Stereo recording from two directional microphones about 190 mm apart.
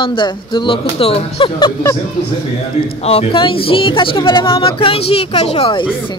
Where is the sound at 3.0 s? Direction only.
35° left (ahead or behind).